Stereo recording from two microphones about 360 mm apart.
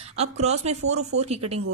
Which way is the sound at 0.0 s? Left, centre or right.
Centre.